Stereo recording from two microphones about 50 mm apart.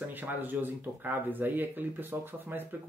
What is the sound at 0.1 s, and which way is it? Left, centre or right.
Speech, right.